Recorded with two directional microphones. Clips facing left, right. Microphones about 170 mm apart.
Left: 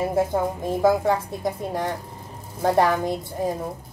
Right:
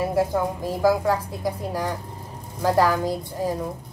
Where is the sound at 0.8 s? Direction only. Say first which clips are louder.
Even; 25° left (ahead or behind).